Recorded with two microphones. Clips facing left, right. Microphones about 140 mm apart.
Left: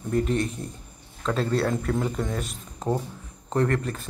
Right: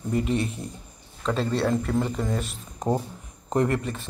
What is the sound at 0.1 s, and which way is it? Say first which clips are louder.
A man's voice: left 1 dB; 5° right (ahead or behind).